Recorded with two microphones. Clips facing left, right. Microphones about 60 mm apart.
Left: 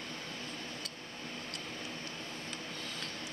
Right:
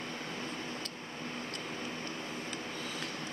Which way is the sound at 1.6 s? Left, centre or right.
Centre.